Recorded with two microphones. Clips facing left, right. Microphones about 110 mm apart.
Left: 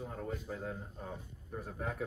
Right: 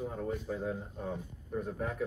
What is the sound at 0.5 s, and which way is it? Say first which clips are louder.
Speech: right 5 dB; 10° right (ahead or behind).